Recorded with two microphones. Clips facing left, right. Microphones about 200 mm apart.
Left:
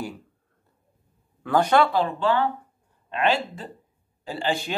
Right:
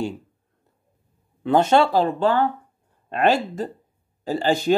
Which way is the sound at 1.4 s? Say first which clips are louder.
Right 3 dB; 25° right (ahead or behind).